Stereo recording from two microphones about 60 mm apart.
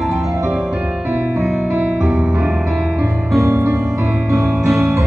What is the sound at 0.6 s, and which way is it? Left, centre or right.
Music, right.